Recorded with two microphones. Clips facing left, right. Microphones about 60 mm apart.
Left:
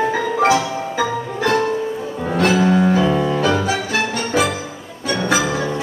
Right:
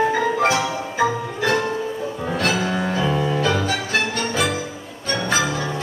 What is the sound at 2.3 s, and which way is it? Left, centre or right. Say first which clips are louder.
Music: left 6 dB; centre.